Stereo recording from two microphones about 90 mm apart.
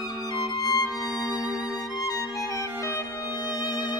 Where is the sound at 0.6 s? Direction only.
45° left (ahead or behind).